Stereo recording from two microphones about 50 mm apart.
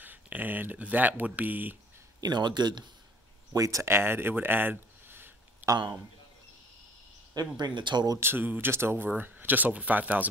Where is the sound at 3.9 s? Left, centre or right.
Right.